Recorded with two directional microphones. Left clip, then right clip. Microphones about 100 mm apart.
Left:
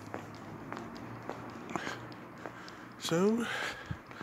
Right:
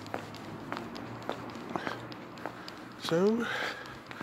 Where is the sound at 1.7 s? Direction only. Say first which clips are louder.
Right 2 dB; 55° left (ahead or behind).